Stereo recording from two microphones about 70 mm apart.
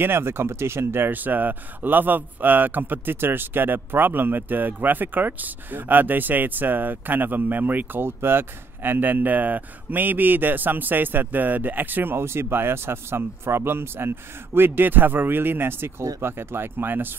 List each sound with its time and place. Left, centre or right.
0.0 s speech: right